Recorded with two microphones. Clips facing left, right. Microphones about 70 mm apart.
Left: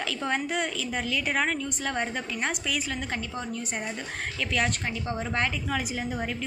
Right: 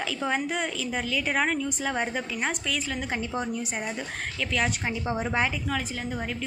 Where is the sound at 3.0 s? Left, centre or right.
Centre.